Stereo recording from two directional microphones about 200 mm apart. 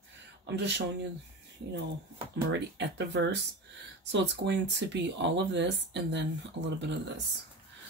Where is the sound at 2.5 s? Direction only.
60° right (ahead or behind).